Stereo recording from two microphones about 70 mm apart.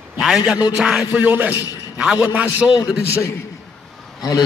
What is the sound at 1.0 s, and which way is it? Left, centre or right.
Music, right.